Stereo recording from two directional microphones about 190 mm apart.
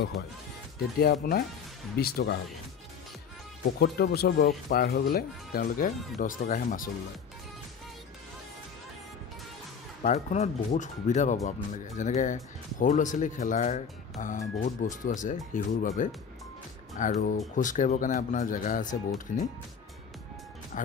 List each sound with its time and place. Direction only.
0.7 s speech: 55° left (ahead or behind)
3.8 s speech: 60° left (ahead or behind)
10.0 s speech: 35° left (ahead or behind)
17.0 s speech: 45° left (ahead or behind)
20.7 s music: 45° left (ahead or behind)